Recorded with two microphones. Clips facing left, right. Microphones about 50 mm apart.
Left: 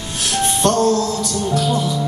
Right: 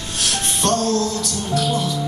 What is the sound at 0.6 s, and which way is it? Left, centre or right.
Music, centre.